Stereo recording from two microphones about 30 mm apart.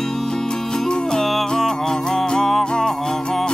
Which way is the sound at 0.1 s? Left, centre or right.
Centre.